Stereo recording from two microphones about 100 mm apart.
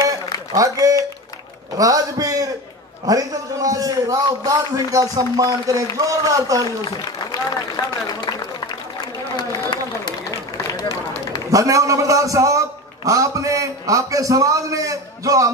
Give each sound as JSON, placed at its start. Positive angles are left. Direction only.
{"t": 0.6, "sound": "a man's voice", "side_deg": -35}
{"t": 7.7, "sound": "a man's voice", "side_deg": 45}
{"t": 9.4, "sound": "a sound", "side_deg": 50}
{"t": 10.7, "sound": "run", "side_deg": 35}
{"t": 11.5, "sound": "a man's voice", "side_deg": -35}